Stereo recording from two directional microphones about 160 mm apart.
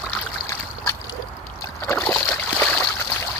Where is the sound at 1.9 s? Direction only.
10° left (ahead or behind).